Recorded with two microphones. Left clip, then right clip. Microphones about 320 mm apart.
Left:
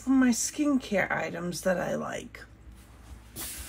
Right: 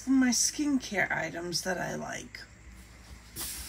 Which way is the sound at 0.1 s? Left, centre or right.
Centre.